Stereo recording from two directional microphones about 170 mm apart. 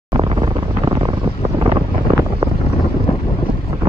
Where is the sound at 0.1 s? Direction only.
30° right (ahead or behind).